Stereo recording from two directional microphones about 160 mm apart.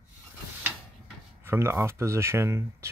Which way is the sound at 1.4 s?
15° right (ahead or behind).